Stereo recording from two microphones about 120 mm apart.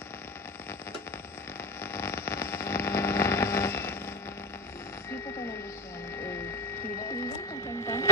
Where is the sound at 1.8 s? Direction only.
20° left (ahead or behind).